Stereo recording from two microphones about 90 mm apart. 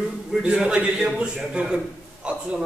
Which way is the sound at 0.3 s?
10° right (ahead or behind).